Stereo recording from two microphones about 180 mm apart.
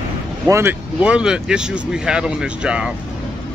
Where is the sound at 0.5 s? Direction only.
15° right (ahead or behind).